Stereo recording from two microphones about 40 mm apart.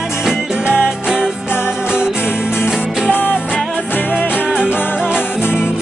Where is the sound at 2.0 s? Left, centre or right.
Left.